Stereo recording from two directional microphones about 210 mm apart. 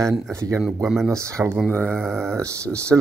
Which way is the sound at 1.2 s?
15° right (ahead or behind).